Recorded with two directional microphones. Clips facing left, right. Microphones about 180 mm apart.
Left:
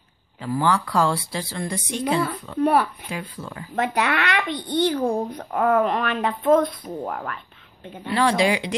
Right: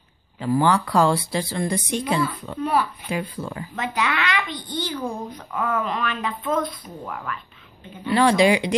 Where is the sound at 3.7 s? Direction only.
55° left (ahead or behind).